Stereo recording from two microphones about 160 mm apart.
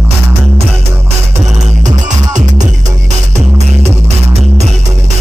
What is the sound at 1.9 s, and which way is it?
Music, 50° right (ahead or behind).